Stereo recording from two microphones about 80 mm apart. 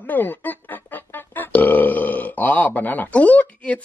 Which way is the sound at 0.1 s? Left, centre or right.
Left.